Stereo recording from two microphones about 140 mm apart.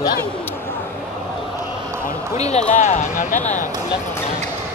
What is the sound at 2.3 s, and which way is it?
Speech, 50° left (ahead or behind).